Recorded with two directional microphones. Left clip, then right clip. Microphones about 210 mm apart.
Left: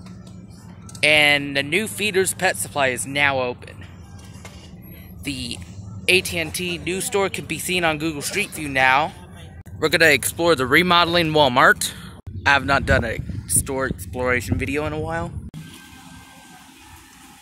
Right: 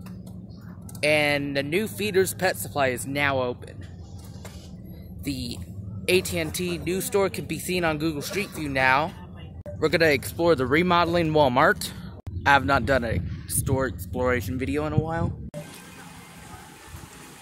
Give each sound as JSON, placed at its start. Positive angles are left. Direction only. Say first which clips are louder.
{"t": 1.0, "sound": "speech", "louder": "left 6 dB", "side_deg": 0}
{"t": 5.2, "sound": "speech", "louder": "left 4 dB", "side_deg": -5}